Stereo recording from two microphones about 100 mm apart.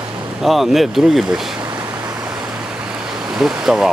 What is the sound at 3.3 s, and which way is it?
Speech, 5° right (ahead or behind).